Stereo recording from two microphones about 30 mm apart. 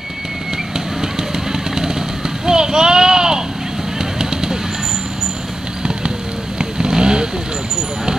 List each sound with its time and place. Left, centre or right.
1.5 s vehicle: centre
2.4 s a sound: right
6.6 s vehicle: right